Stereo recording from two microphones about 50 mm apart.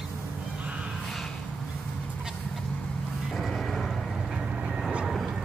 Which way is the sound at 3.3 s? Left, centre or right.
Centre.